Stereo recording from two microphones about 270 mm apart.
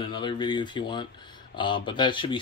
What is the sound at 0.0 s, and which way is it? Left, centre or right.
Speech, centre.